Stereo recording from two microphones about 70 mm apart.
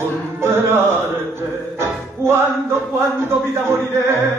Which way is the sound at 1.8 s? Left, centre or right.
Right.